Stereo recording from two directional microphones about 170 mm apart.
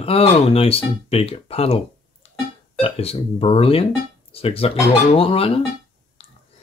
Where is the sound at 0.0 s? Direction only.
35° left (ahead or behind).